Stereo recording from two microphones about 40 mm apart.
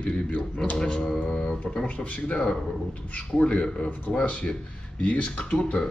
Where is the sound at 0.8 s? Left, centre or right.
Centre; by 5.4 s left.